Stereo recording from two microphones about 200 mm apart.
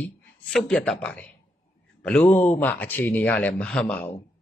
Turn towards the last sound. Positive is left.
turn(degrees=10)  # may be behind; listen again after turning